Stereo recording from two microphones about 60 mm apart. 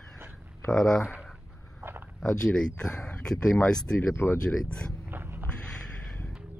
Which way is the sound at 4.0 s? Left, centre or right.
Left.